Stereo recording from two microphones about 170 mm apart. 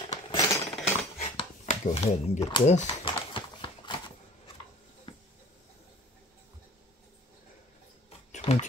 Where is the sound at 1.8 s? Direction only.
40° left (ahead or behind).